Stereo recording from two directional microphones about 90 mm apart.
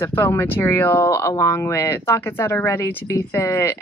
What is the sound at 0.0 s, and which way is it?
Speech, 30° left (ahead or behind).